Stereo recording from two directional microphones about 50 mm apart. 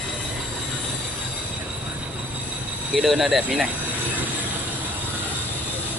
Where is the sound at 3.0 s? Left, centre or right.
Centre.